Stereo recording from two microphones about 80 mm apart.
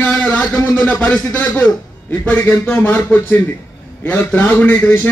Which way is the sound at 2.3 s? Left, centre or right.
Left.